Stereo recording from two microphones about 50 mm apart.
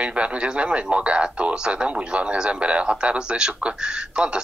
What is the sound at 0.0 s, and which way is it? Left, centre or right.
A man's voice, right.